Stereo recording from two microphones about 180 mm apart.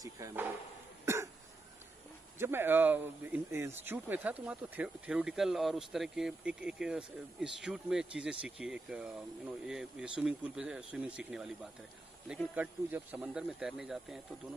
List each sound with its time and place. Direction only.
0.0 s speech: 15° right (ahead or behind)
1.0 s cough: 15° right (ahead or behind)
2.3 s speech: 15° right (ahead or behind)